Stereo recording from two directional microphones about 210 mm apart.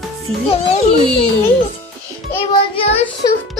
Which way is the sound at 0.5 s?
30° left (ahead or behind).